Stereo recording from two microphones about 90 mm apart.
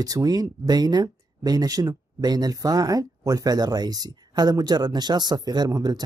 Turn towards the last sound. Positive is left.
turn(degrees=-45)  # may be behind; listen again after turning